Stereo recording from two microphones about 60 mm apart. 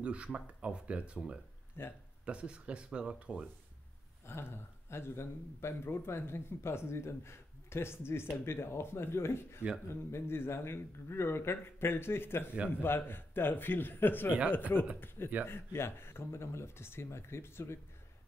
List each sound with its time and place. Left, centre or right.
0.0 s speech: centre
1.8 s a man's voice: left
2.2 s speech: centre
4.3 s a man's voice: left
12.5 s speech: centre
12.8 s a man's voice: left
15.4 s a man's voice: left